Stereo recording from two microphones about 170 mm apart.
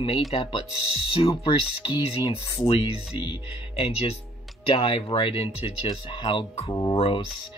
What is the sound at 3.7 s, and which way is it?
Speech, 35° left (ahead or behind).